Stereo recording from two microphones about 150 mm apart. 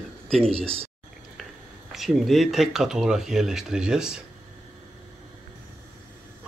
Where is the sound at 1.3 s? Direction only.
Centre (ahead or behind).